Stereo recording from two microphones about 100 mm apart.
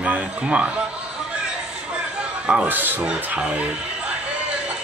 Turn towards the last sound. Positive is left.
turn(degrees=-10)  # may be behind; listen again after turning